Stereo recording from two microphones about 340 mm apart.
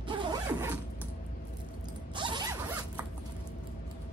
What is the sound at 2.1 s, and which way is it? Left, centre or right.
Zipper, centre.